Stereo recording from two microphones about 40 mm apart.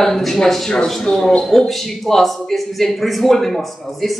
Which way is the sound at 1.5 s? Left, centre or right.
Centre.